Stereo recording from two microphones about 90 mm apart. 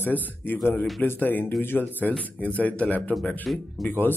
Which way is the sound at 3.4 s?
Centre (ahead or behind).